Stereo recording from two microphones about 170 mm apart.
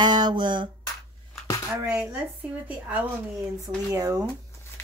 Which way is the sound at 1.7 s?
10° right (ahead or behind).